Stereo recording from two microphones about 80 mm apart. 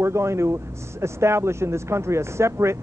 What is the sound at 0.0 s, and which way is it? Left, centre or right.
Speech, right.